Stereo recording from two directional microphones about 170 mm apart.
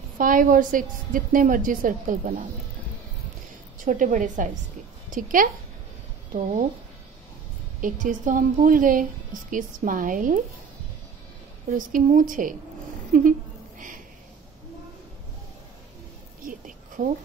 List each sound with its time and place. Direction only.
0.2 s a woman's voice: 55° right (ahead or behind)
3.8 s a woman's voice: 50° right (ahead or behind)
7.8 s a woman's voice: 50° right (ahead or behind)
11.7 s a woman's voice: 55° right (ahead or behind)
16.4 s a sound: 50° right (ahead or behind)